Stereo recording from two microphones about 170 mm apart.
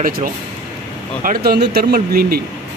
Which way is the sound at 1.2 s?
60° right (ahead or behind).